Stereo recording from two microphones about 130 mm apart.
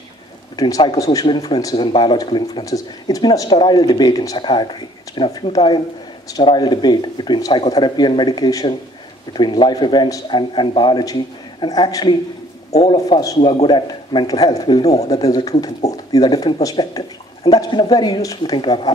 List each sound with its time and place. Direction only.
0.6 s speech: 30° left (ahead or behind)